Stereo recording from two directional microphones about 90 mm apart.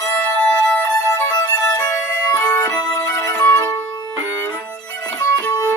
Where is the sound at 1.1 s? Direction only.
40° left (ahead or behind).